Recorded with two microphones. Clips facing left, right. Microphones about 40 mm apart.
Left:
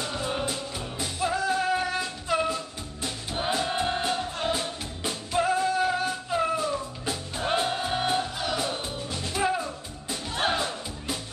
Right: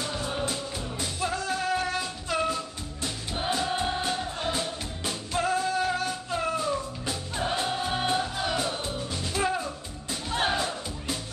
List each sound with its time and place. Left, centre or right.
0.2 s music: centre
7.5 s music: centre
7.8 s music: centre